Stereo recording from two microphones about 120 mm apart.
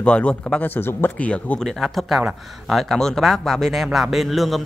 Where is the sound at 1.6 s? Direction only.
Centre (ahead or behind).